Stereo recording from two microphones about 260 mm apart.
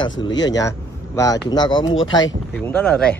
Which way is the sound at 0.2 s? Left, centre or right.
Centre.